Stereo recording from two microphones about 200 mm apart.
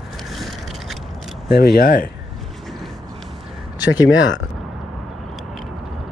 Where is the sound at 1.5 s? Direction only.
50° left (ahead or behind).